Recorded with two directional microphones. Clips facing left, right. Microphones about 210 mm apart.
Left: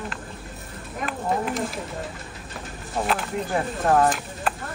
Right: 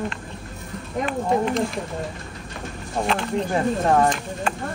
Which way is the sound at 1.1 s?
5° left (ahead or behind).